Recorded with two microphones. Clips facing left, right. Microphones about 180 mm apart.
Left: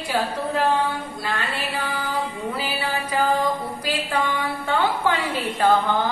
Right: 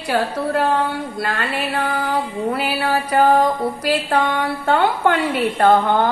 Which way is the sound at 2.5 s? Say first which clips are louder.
Right 9 dB; 65° right (ahead or behind).